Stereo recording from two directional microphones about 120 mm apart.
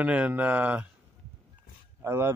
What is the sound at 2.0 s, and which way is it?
Speech, 20° right (ahead or behind).